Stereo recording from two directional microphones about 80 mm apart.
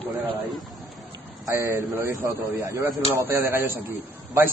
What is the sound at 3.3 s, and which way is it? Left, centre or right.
Speech, right.